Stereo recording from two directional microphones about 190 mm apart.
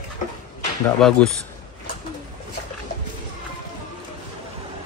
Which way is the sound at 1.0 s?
Centre (ahead or behind).